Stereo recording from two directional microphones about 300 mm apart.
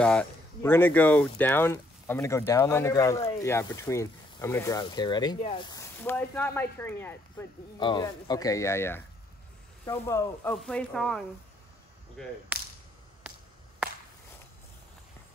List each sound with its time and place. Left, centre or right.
0.0 s speech: centre